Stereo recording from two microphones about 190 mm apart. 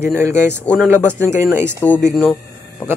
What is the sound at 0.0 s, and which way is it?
Speech, 15° right (ahead or behind).